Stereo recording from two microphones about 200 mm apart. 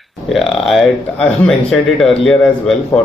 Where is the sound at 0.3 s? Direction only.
Centre (ahead or behind).